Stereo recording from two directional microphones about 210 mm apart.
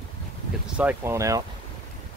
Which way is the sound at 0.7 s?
5° right (ahead or behind).